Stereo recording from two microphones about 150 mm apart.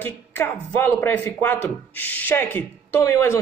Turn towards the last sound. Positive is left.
turn(degrees=20)  # may be behind; listen again after turning